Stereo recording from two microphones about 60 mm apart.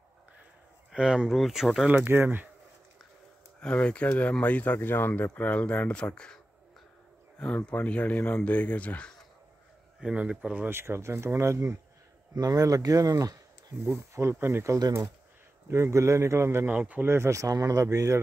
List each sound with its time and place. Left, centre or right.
0.9 s speech: centre
1.9 s speech: right
3.7 s speech: left
7.5 s speech: left
10.1 s speech: centre
10.7 s speech: right
12.4 s speech: right
13.9 s speech: right
16.6 s speech: right
17.0 s speech: right